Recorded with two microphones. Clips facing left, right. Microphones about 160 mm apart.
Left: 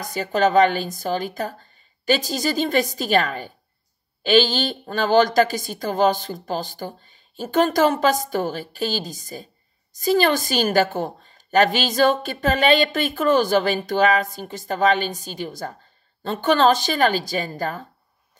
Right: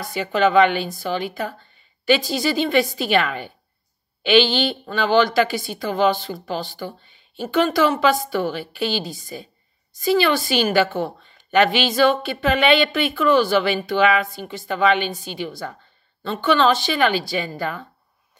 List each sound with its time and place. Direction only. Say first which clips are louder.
0.0 s a woman's voice: right 1 dB; 40° left (ahead or behind)